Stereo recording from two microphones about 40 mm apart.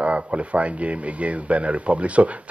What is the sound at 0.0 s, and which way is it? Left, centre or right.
Speech, right.